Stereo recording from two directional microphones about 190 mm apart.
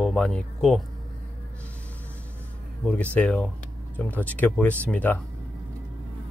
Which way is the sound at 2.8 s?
5° left (ahead or behind).